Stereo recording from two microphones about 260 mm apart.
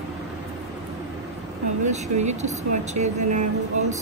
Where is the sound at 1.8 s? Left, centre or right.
Right.